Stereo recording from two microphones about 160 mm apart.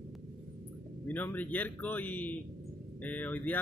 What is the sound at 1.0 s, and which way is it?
Speech, 10° left (ahead or behind).